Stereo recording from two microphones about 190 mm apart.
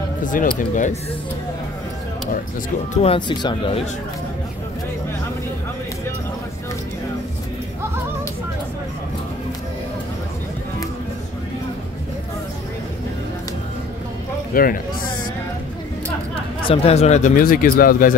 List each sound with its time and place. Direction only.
0.2 s speech: 45° left (ahead or behind)
3.0 s speech: 25° left (ahead or behind)
14.5 s speech: 50° left (ahead or behind)
16.6 s speech: 30° left (ahead or behind); by 18.1 s 45° left (ahead or behind)